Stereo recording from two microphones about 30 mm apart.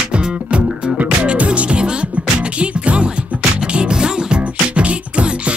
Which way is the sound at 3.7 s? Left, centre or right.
Right.